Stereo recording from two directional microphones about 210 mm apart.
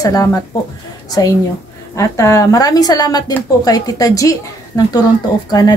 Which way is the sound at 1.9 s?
15° left (ahead or behind).